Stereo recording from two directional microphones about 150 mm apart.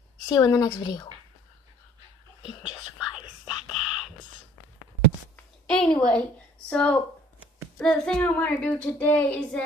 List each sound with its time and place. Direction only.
0.3 s a woman's voice: 25° left (ahead or behind)
2.4 s speech: 35° left (ahead or behind)
3.1 s whispering: 5° right (ahead or behind)
5.3 s a sound: 5° left (ahead or behind)
6.7 s speech: 10° left (ahead or behind)